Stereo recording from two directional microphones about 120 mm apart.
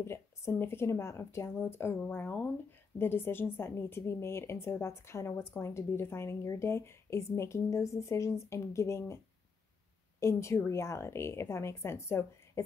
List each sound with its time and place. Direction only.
0.0 s a woman's voice: 20° left (ahead or behind)
10.2 s a woman's voice: 25° left (ahead or behind)